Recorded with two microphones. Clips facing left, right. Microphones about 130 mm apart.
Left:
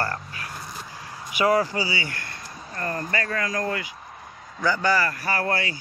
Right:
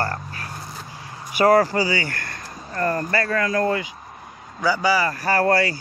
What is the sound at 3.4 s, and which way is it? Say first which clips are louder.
Speech: right 6 dB; 55° right (ahead or behind).